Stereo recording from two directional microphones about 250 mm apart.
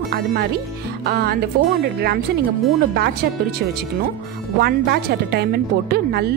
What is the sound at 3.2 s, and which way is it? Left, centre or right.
Speech, right.